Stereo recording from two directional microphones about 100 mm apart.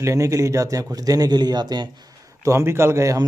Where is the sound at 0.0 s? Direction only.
30° right (ahead or behind).